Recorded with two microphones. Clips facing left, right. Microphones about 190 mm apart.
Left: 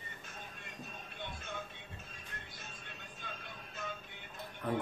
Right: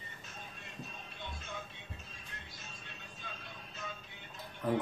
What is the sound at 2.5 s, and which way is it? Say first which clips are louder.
Music: left 1 dB; 55° left (ahead or behind).